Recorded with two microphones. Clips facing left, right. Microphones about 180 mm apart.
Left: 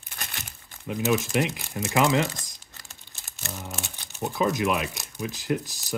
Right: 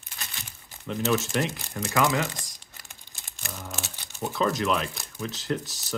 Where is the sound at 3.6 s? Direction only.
5° left (ahead or behind).